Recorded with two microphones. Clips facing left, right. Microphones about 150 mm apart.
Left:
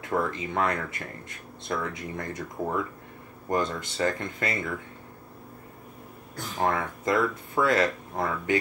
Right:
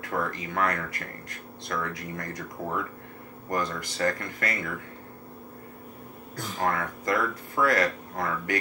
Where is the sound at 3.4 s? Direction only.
25° left (ahead or behind).